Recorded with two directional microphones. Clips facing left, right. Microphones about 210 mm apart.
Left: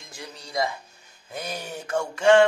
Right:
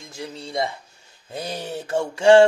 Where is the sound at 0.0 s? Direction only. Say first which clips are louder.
Right 7 dB; 25° right (ahead or behind).